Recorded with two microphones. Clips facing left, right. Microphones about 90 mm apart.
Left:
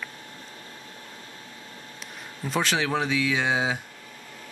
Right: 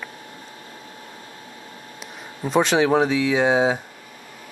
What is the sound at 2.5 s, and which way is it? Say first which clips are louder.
Speech: right 8 dB; 5° right (ahead or behind).